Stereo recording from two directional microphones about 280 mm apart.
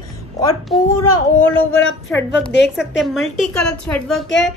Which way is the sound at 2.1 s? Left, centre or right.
Centre.